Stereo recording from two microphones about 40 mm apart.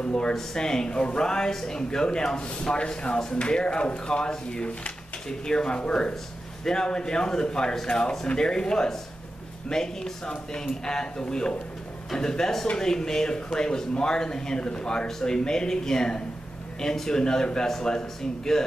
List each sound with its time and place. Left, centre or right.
0.0 s speech: left